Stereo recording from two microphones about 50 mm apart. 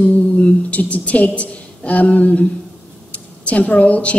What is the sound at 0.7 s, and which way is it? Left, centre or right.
A woman's voice, left.